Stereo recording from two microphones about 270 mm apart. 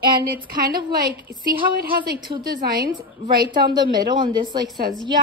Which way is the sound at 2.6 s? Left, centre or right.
Right.